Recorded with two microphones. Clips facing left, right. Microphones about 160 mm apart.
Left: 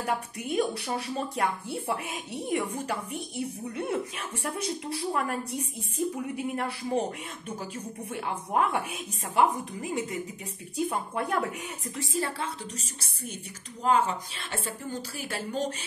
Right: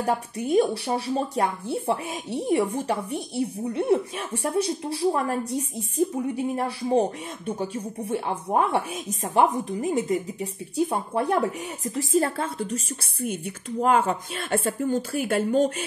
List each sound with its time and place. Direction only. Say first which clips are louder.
0.0 s a woman's voice: right 5 dB; 35° right (ahead or behind)
13.0 s a woman's voice: right 10 dB; 55° right (ahead or behind)